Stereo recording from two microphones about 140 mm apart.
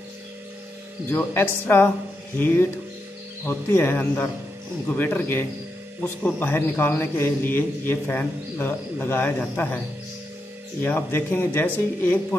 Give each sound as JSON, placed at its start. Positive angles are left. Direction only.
{"t": 1.1, "sound": "a man's voice", "side_deg": 15}
{"t": 10.8, "sound": "a man's voice", "side_deg": 15}